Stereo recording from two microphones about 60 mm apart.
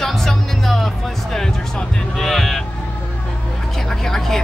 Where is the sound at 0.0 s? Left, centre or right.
Centre.